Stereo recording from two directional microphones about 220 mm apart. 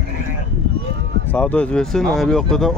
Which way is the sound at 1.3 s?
5° left (ahead or behind).